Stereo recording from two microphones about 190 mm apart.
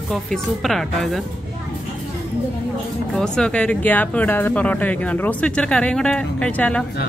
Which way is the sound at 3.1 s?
5° left (ahead or behind).